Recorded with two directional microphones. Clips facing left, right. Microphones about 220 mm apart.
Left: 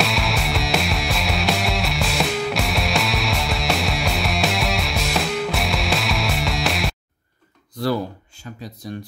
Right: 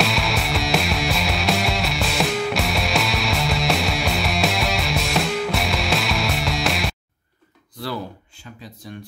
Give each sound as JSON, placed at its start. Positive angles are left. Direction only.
{"t": 0.0, "sound": "music", "side_deg": 0}
{"t": 8.8, "sound": "speech", "side_deg": 40}